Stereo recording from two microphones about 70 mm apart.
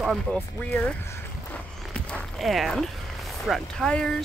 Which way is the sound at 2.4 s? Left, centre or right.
Centre.